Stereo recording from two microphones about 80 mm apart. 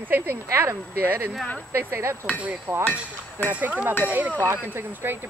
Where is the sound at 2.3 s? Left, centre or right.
Centre.